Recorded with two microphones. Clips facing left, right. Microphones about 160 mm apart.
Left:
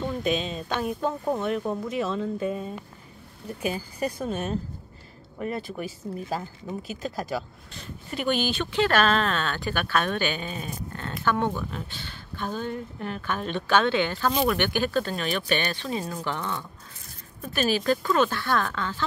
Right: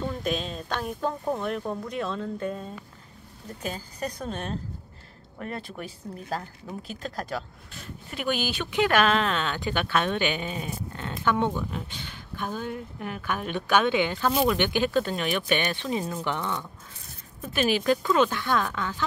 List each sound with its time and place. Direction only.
0.0 s a woman's voice: centre (ahead or behind)